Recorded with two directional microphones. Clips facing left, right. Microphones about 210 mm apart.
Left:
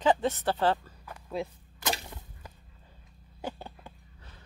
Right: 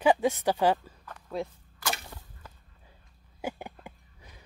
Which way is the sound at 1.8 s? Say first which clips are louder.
Left 2 dB; 20° left (ahead or behind).